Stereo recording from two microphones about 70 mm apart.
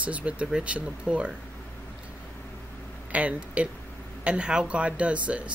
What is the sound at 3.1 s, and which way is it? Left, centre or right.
Speech, centre.